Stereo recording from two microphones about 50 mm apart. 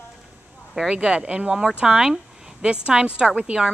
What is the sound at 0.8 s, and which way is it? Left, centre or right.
Speech, centre.